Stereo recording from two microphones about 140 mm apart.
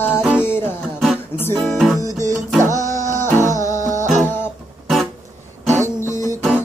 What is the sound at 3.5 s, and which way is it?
Music, 65° right (ahead or behind).